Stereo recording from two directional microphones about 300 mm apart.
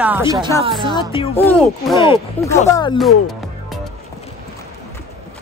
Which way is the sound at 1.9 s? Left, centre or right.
Centre.